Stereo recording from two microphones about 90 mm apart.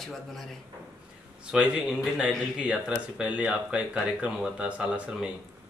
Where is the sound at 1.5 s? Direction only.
10° right (ahead or behind).